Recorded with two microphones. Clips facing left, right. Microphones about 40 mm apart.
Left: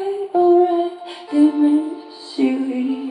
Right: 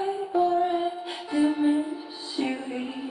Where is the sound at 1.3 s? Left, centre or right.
Centre.